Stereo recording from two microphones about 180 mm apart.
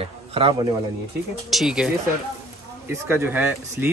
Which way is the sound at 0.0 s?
30° right (ahead or behind).